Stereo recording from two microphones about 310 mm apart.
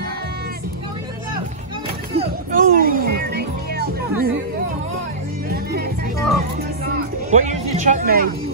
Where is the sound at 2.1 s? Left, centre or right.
Right.